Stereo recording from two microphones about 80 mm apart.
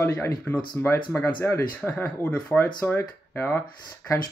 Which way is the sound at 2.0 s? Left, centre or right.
Centre.